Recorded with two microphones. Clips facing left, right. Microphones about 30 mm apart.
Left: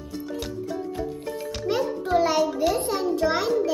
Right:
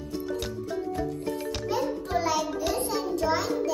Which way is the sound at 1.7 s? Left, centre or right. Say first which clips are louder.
Left 4 dB; left.